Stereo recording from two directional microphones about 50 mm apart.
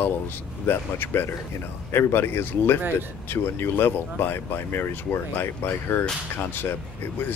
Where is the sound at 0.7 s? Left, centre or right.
Left.